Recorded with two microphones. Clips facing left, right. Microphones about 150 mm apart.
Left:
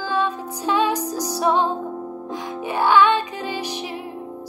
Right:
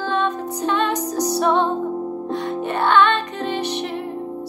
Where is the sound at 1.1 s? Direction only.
65° right (ahead or behind).